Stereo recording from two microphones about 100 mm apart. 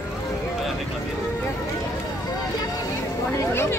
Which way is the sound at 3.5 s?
25° left (ahead or behind).